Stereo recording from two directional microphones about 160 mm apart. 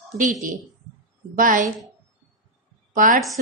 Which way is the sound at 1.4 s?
55° right (ahead or behind).